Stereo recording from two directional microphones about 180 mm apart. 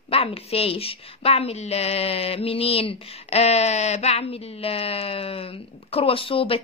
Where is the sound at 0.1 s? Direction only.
30° left (ahead or behind).